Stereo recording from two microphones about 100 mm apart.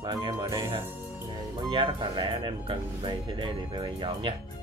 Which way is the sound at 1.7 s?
55° right (ahead or behind).